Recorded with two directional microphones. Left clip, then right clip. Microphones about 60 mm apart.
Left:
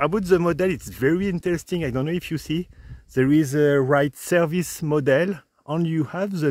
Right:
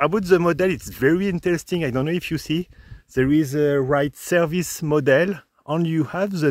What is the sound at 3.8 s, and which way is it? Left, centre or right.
Speech, left.